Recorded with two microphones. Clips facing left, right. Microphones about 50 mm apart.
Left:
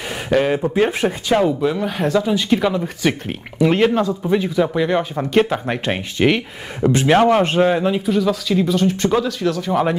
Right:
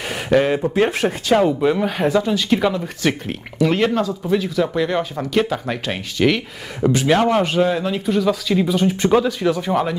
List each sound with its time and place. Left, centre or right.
0.3 s speech: centre
5.3 s speech: left
5.7 s speech: left
7.6 s speech: centre
8.0 s speech: centre